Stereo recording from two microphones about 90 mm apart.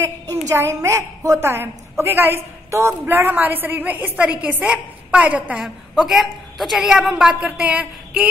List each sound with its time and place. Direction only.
0.0 s a woman's voice: 30° right (ahead or behind); by 5.7 s 15° right (ahead or behind)
5.9 s a woman's voice: 5° right (ahead or behind)